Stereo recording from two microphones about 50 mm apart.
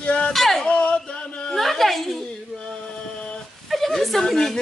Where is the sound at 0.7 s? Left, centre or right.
Left.